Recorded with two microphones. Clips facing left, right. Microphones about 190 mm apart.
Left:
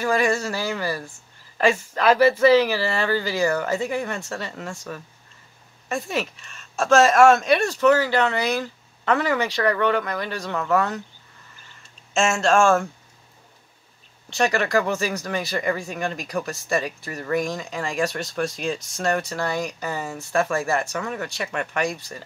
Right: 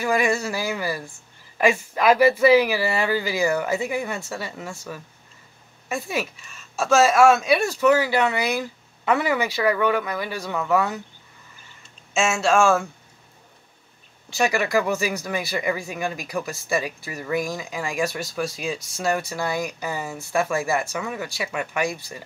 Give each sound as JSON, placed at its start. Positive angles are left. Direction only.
{"t": 0.0, "sound": "speech", "side_deg": -10}
{"t": 12.1, "sound": "speech", "side_deg": -5}
{"t": 14.3, "sound": "speech", "side_deg": -10}